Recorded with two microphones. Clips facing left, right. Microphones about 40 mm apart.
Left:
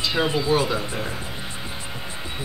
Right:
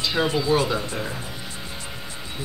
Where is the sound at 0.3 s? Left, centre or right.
Centre.